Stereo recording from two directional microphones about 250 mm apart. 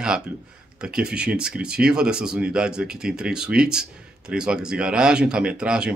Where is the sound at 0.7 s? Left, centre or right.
Centre.